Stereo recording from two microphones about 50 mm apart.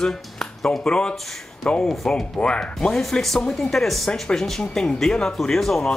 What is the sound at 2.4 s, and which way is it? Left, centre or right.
Speech, centre.